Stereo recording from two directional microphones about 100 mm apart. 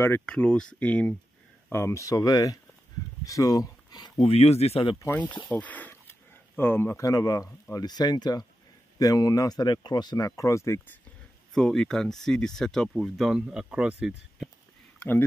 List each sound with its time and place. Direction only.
0.3 s speech: 10° left (ahead or behind)
1.7 s speech: 25° left (ahead or behind)
4.2 s speech: 90° left
5.1 s speech: 15° left (ahead or behind)
5.5 s a sound: 15° left (ahead or behind)
7.1 s speech: 40° left (ahead or behind)
11.5 s speech: 5° left (ahead or behind); by 14.1 s 10° right (ahead or behind)
15.0 s speech: 20° left (ahead or behind)